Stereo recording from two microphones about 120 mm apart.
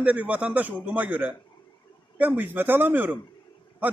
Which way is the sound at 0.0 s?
10° right (ahead or behind).